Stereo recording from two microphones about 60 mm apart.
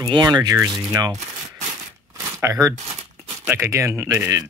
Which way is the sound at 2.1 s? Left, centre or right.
Right.